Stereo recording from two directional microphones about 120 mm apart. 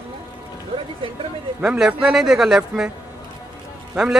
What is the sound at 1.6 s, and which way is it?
Speech, 5° right (ahead or behind).